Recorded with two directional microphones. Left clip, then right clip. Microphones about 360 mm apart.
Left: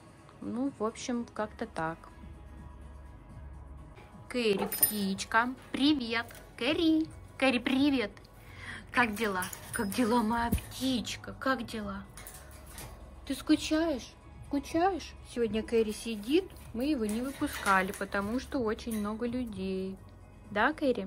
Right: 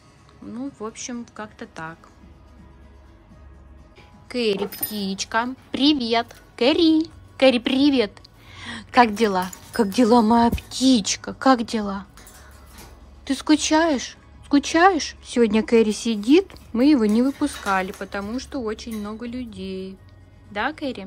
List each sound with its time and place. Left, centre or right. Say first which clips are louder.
0.5 s a woman's voice: right 1 dB; centre
4.3 s a woman's voice: right 7 dB; centre
13.2 s a woman's voice: right 10 dB; centre
17.6 s a woman's voice: right 3 dB; centre